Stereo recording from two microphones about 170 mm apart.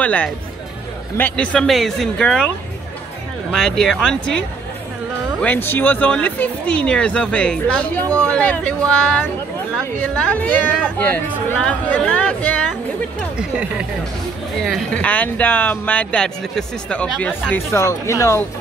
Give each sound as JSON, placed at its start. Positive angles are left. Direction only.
{"t": 0.0, "sound": "speech", "side_deg": 10}
{"t": 3.5, "sound": "speech", "side_deg": 5}
{"t": 13.4, "sound": "speech", "side_deg": -5}
{"t": 14.6, "sound": "speech", "side_deg": 5}